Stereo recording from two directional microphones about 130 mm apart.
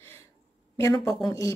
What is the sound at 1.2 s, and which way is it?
Speech, 25° left (ahead or behind).